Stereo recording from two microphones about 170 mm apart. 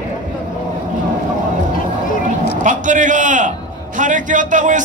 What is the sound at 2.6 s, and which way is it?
A man's voice, 50° right (ahead or behind).